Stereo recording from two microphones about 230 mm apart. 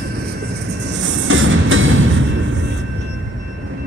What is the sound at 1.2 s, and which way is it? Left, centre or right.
Music, right.